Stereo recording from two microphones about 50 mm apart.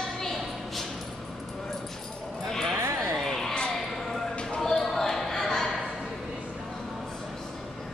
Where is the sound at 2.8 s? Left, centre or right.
Right.